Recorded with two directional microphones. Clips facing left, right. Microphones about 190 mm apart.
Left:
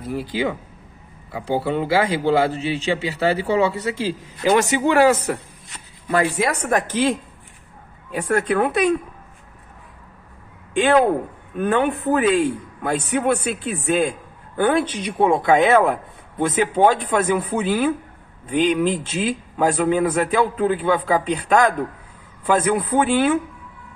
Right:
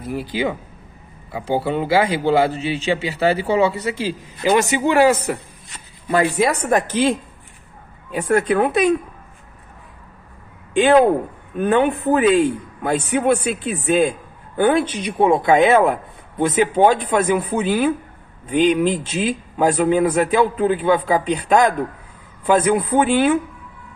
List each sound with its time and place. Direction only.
0.1 s a man's voice: 15° right (ahead or behind)
10.8 s a man's voice: 20° right (ahead or behind)